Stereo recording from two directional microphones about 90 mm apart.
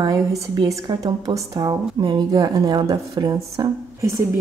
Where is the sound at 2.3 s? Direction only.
45° right (ahead or behind).